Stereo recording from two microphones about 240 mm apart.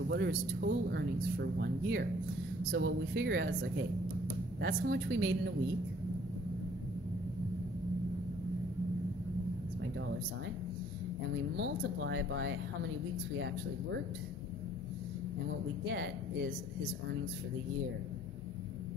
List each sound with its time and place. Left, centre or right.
0.1 s speech: right
4.6 s speech: right
11.5 s speech: right